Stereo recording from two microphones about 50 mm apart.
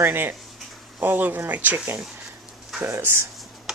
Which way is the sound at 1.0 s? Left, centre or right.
Right.